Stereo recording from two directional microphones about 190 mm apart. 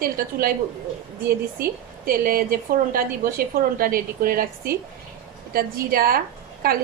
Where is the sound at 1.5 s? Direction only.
50° right (ahead or behind).